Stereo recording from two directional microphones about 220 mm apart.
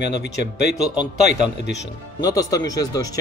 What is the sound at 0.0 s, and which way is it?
Speech, 50° left (ahead or behind).